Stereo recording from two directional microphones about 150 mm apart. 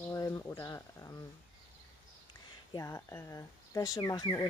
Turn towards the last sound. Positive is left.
turn(degrees=30)  # may be behind; listen again after turning